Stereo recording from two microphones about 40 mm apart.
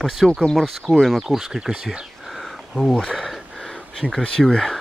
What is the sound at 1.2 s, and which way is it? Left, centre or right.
Speech, centre.